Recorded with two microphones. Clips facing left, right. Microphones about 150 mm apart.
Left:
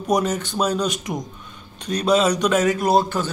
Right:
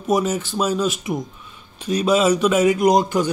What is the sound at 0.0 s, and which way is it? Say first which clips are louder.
A man's voice: right 1 dB; 5° right (ahead or behind).